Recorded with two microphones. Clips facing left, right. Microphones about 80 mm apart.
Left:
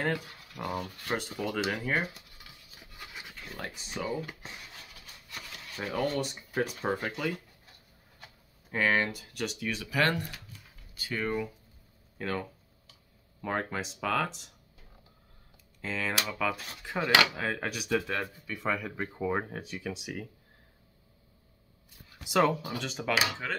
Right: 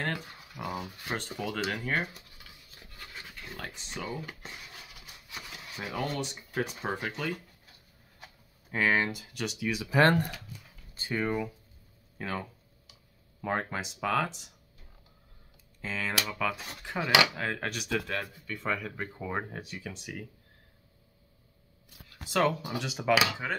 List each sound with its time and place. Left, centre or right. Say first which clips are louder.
0.0 s speech: left 3 dB; centre
1.1 s a sound: left 2 dB; centre
6.1 s speech: left 2 dB; centre
8.2 s a sound: right 1 dB; centre
9.2 s speech: right 1 dB; centre
9.8 s speech: right 5 dB; right
11.1 s speech: right 1 dB; centre
12.2 s a sound: left 2 dB; centre
13.4 s speech: right 1 dB; centre
15.8 s speech: left 1 dB; centre
22.8 s speech: right 3 dB; centre